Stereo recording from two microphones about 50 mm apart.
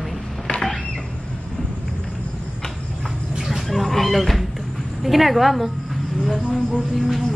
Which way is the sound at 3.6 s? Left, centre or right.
Centre.